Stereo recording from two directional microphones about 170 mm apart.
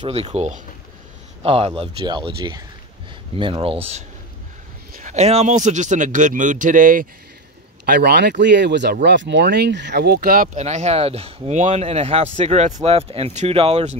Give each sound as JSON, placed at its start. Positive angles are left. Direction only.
{"t": 0.0, "sound": "speech", "side_deg": -35}
{"t": 5.0, "sound": "speech", "side_deg": -40}
{"t": 7.8, "sound": "speech", "side_deg": -75}